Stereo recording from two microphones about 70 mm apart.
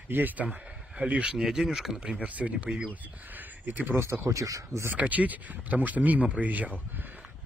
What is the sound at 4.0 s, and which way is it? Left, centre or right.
Speech, right.